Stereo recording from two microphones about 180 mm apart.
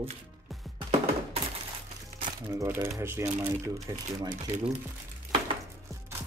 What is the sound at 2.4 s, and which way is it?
Speech, 15° right (ahead or behind).